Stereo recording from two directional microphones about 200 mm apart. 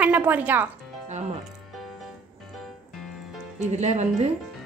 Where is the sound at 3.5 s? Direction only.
35° right (ahead or behind).